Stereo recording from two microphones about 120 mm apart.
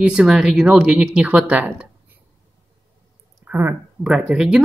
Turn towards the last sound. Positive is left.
turn(degrees=-5)  # may be behind; listen again after turning